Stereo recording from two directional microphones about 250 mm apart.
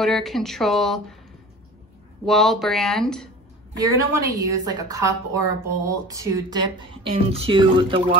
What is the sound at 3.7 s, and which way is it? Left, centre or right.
A woman's voice, centre.